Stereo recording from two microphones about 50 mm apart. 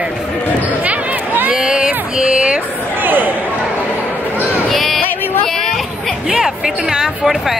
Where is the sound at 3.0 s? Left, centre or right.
Right.